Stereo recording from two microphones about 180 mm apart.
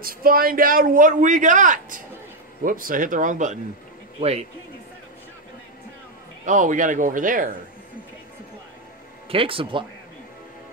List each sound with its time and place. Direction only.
0.0 s a man's voice: 55° right (ahead or behind); by 4.5 s 35° right (ahead or behind)
6.4 s a man's voice: 45° right (ahead or behind)
9.3 s speech: 30° right (ahead or behind)